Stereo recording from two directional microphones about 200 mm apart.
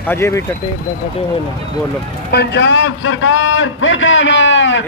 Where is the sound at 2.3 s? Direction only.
55° left (ahead or behind).